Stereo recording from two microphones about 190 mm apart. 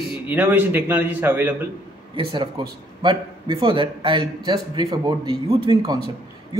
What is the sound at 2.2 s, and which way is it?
A man's voice, 25° right (ahead or behind).